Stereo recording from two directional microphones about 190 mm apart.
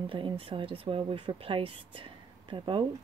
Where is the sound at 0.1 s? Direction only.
25° right (ahead or behind).